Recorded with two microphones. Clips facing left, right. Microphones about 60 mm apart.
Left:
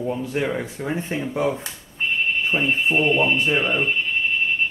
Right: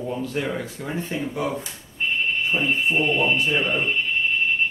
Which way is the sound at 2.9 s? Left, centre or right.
Centre.